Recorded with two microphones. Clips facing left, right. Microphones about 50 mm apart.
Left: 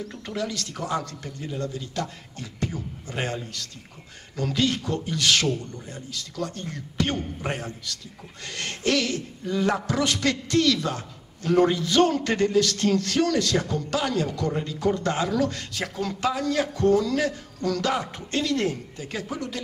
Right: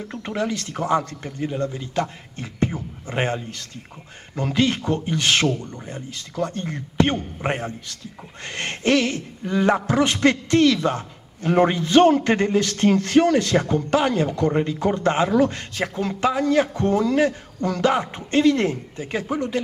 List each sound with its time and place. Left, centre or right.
0.1 s a man's voice: right